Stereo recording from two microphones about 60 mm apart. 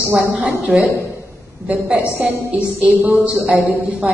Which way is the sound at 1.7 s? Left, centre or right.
Right.